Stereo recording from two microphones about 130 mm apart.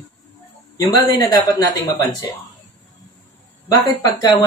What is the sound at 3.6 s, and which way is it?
Speech, 25° left (ahead or behind).